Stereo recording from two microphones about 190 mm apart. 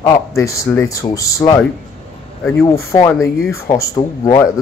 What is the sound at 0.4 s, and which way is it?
Speech, 15° left (ahead or behind).